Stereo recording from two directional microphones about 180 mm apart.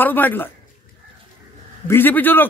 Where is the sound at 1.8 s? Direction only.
10° left (ahead or behind).